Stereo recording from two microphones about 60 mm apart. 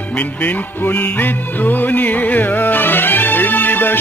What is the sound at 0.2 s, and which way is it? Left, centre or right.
Music, left.